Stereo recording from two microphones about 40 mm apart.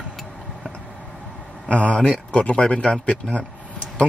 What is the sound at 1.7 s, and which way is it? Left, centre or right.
Speech, left.